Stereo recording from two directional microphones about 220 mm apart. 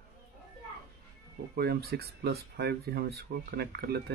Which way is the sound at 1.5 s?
45° right (ahead or behind).